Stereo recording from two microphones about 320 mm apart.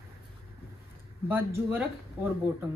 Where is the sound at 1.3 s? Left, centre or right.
Centre.